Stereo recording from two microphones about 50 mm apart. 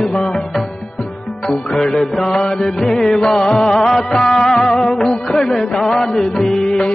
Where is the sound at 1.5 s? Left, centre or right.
Centre.